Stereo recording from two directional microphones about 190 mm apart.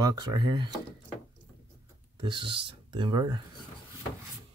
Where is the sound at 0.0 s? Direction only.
20° right (ahead or behind).